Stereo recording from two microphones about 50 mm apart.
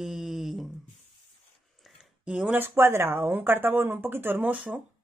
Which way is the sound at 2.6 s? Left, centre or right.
Right.